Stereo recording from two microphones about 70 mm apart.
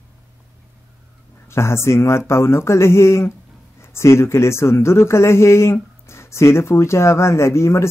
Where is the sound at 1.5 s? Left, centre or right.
Left.